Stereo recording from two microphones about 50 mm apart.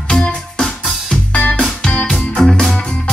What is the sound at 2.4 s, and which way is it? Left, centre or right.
Music, centre.